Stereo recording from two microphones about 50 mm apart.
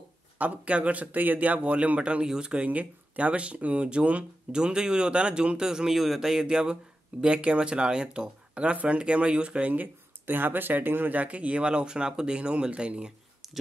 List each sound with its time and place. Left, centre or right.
0.4 s speech: right
2.7 s speech: right
4.5 s a man's voice: centre
9.7 s speech: right; by 13.1 s centre